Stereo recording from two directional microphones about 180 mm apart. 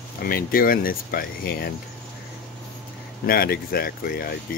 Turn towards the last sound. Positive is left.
turn(degrees=55)  # may be behind; listen again after turning